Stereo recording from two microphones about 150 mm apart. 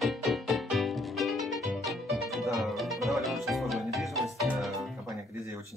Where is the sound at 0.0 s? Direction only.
Centre (ahead or behind).